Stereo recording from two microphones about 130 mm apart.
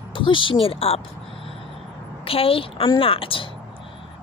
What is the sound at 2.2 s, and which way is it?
A woman's voice, 45° left (ahead or behind).